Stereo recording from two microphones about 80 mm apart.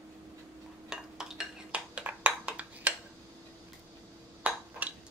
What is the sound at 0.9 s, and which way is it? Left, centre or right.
Dishes, centre.